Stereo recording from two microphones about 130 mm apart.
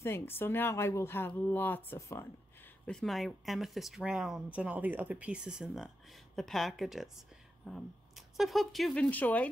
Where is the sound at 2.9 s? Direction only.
Centre (ahead or behind).